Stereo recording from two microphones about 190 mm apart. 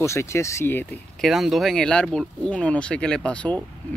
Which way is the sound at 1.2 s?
Centre (ahead or behind).